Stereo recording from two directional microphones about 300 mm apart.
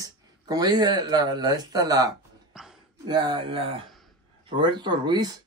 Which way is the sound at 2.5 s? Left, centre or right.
Centre.